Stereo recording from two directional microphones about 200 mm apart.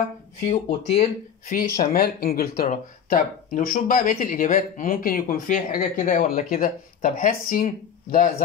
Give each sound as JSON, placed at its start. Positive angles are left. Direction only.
{"t": 0.5, "sound": "speech", "side_deg": 30}
{"t": 1.5, "sound": "speech", "side_deg": 45}